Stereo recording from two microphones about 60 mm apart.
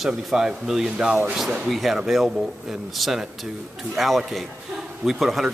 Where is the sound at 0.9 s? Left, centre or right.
Right.